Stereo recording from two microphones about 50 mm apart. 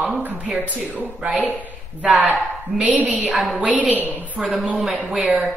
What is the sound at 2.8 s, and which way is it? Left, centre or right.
Speech, right.